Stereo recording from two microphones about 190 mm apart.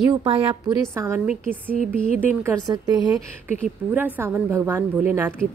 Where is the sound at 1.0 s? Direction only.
15° right (ahead or behind).